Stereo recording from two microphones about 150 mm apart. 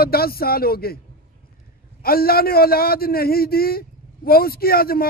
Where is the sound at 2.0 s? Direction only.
85° left.